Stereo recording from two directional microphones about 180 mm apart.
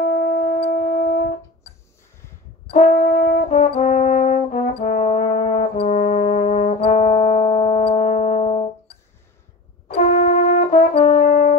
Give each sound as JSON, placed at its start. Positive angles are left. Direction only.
{"t": 0.2, "sound": "shofar", "side_deg": 45}
{"t": 2.7, "sound": "brass instrument", "side_deg": 45}
{"t": 9.8, "sound": "brass instrument", "side_deg": 40}
{"t": 11.1, "sound": "french horn", "side_deg": 45}